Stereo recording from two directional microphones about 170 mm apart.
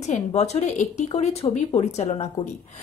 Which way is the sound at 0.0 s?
40° left (ahead or behind).